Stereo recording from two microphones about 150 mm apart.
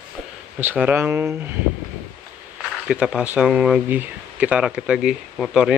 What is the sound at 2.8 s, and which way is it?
Speech, 5° right (ahead or behind).